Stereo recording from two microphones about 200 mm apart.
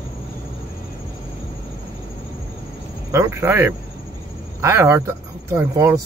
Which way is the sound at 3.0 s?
15° right (ahead or behind).